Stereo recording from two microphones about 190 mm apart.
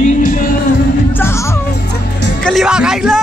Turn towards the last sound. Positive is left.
turn(degrees=-5)  # may be behind; listen again after turning